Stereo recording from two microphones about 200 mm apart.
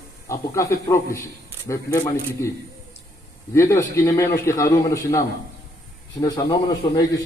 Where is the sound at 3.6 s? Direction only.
15° left (ahead or behind).